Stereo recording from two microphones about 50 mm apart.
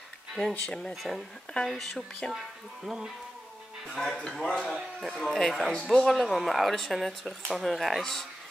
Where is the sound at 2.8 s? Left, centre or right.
Centre.